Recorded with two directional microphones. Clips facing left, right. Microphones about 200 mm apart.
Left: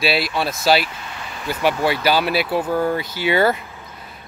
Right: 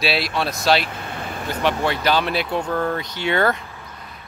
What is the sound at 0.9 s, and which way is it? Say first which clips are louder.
Vehicle: right 4 dB; 55° right (ahead or behind).